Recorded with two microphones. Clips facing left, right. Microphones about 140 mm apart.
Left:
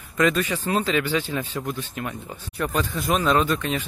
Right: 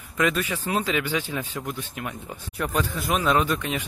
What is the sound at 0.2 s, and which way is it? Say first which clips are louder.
Speech: left 3 dB; 10° right (ahead or behind).